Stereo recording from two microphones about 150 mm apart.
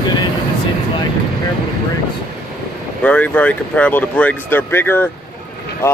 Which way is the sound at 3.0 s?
10° left (ahead or behind).